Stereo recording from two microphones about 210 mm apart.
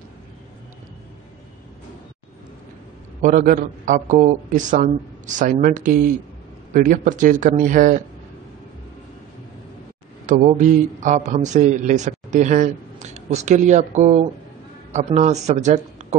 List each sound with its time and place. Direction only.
3.2 s a man's voice: 35° right (ahead or behind)
10.2 s a man's voice: 35° right (ahead or behind)